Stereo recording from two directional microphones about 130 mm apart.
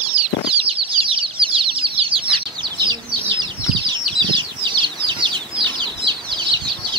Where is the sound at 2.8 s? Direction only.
35° right (ahead or behind).